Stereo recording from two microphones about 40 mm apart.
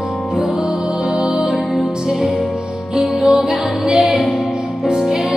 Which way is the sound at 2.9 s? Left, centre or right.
Centre.